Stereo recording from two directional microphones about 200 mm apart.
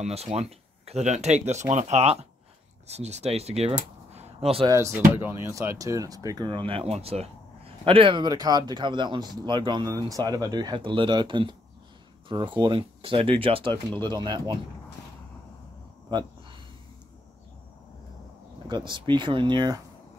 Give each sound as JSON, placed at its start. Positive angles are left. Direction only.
{"t": 0.0, "sound": "speech", "side_deg": -30}
{"t": 4.6, "sound": "speech", "side_deg": -15}
{"t": 16.1, "sound": "a sound", "side_deg": -20}
{"t": 18.7, "sound": "speech", "side_deg": -25}